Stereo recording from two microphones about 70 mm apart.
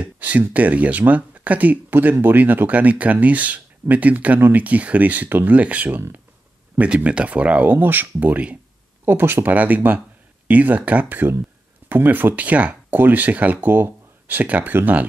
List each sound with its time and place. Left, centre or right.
0.0 s speech: right
6.8 s speech: centre